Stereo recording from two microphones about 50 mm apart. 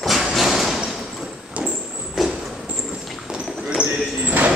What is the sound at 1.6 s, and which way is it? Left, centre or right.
Walk, right.